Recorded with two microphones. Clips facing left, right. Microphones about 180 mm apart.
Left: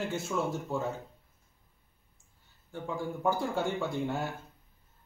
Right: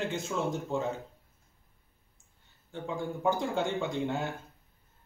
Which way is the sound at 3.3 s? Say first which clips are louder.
Right 1 dB; 5° left (ahead or behind).